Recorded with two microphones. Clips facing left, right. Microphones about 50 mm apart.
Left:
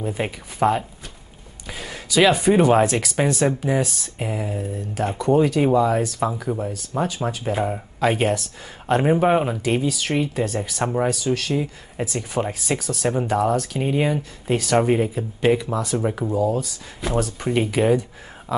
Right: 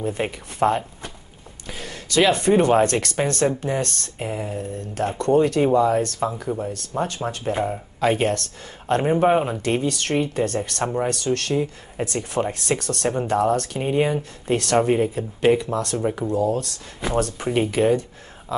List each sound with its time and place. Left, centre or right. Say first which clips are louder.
0.0 s speech: right 1 dB; centre
17.7 s speech: left 1 dB; centre
18.5 s a sound: left 2 dB; centre